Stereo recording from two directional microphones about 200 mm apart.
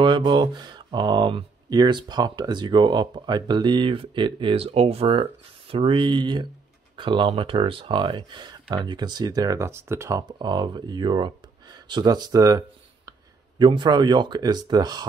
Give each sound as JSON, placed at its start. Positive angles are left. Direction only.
{"t": 0.0, "sound": "speech", "side_deg": -25}